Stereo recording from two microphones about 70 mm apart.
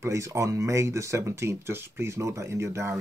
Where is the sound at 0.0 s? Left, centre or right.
Right.